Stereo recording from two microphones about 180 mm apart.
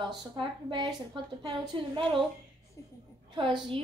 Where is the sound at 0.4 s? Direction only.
25° right (ahead or behind).